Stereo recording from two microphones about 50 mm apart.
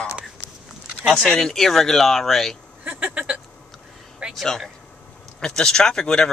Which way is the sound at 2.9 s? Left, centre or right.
Right.